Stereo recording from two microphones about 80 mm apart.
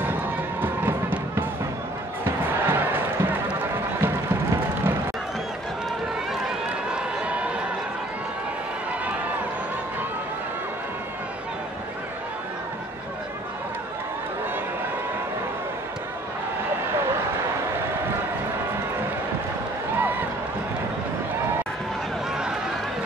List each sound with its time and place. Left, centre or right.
0.0 s music: right
2.2 s music: right
6.4 s run: centre
20.0 s a sound: right